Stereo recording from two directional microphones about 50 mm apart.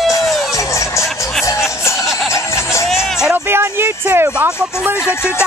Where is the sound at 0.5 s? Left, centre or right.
Left.